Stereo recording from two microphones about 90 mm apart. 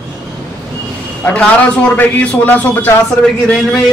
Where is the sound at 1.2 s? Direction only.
15° left (ahead or behind).